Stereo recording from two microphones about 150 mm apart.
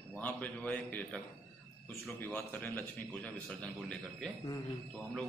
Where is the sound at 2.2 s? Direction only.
10° left (ahead or behind).